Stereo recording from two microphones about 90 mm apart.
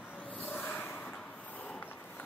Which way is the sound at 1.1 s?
15° left (ahead or behind).